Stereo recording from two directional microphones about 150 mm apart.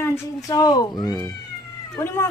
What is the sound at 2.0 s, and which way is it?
Speech, 15° left (ahead or behind).